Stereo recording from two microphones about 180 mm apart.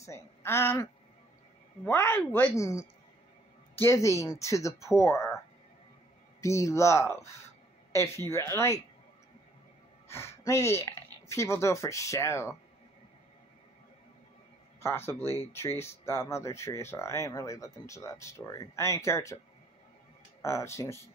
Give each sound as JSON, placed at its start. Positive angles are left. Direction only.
{"t": 0.0, "sound": "speech", "side_deg": 15}
{"t": 1.9, "sound": "speech", "side_deg": 10}
{"t": 3.8, "sound": "speech", "side_deg": 15}
{"t": 6.4, "sound": "speech", "side_deg": 15}
{"t": 10.0, "sound": "a sound", "side_deg": 15}
{"t": 10.4, "sound": "speech", "side_deg": 15}
{"t": 14.8, "sound": "speech", "side_deg": 15}
{"t": 20.4, "sound": "speech", "side_deg": 15}